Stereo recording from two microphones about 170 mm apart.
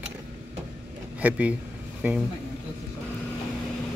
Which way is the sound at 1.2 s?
10° right (ahead or behind).